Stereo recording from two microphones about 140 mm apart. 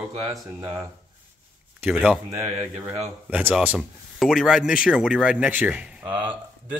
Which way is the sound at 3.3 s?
10° right (ahead or behind).